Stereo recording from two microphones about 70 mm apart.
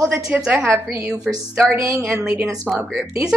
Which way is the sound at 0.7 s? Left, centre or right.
Right.